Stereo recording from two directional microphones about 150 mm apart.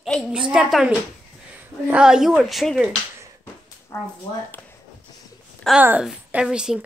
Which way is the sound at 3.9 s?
15° left (ahead or behind).